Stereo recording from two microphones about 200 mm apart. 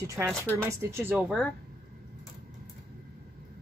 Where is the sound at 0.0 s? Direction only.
15° right (ahead or behind).